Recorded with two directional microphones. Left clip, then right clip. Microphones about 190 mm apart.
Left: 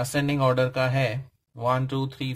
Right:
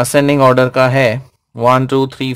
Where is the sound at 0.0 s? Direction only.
35° right (ahead or behind).